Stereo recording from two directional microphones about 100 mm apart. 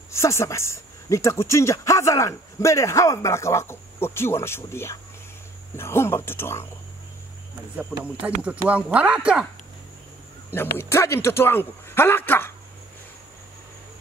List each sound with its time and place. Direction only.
0.1 s speech: 30° left (ahead or behind)
7.7 s speech: 15° right (ahead or behind)
10.5 s speech: 25° left (ahead or behind)